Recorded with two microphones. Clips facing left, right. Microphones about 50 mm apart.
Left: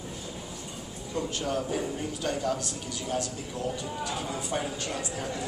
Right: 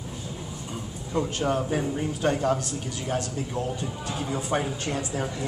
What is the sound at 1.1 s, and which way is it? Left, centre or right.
Speech, right.